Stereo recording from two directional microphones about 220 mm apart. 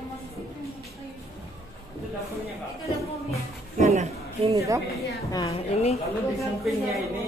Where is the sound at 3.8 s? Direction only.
30° right (ahead or behind).